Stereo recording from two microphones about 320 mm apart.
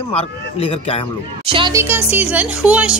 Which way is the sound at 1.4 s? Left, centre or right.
Centre.